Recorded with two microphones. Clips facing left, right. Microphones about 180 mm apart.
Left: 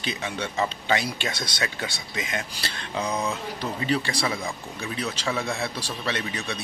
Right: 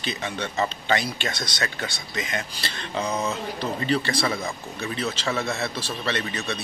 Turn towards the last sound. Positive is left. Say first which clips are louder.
# right 2 dB
turn(degrees=10)  # may be behind; listen again after turning